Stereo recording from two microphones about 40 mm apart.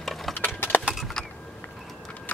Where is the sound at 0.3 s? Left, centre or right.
Left.